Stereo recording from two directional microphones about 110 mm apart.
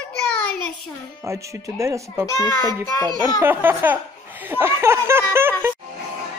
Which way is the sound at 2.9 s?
35° left (ahead or behind).